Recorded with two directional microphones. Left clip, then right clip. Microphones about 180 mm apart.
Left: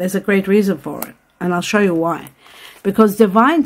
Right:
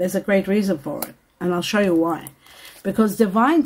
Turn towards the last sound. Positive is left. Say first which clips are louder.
# left 5 dB
turn(degrees=30)  # may be behind; listen again after turning